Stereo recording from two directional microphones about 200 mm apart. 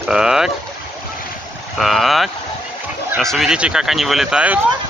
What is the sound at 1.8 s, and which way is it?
Speech, centre (ahead or behind).